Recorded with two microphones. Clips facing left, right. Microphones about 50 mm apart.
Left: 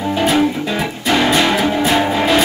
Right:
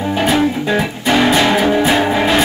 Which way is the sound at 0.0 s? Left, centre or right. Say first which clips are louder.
Even; centre.